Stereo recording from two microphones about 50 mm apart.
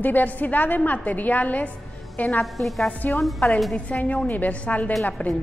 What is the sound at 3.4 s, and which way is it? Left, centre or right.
A woman's voice, left.